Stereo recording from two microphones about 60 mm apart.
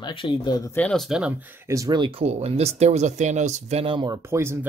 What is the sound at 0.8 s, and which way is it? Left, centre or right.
Speech, left.